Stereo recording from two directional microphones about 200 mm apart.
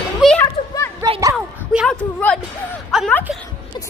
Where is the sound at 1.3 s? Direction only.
5° right (ahead or behind).